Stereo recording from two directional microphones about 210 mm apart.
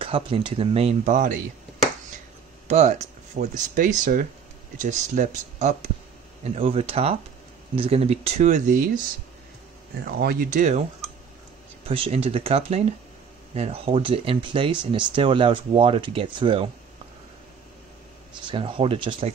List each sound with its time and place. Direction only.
0.0 s speech: 25° right (ahead or behind)
2.7 s speech: 35° right (ahead or behind)
10.2 s speech: 40° right (ahead or behind)
11.9 s speech: 25° right (ahead or behind)
18.4 s speech: 25° right (ahead or behind)